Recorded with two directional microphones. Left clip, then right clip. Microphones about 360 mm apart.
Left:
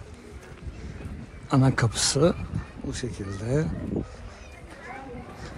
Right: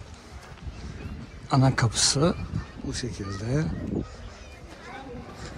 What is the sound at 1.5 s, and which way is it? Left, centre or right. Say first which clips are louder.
Speech: even; centre.